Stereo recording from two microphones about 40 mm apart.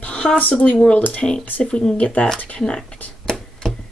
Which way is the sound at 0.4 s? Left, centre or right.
Left.